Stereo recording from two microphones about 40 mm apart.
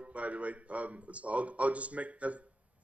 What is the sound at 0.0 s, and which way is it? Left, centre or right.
Speech, right.